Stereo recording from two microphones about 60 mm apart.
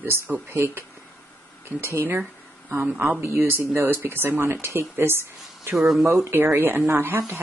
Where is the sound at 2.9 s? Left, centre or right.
Right.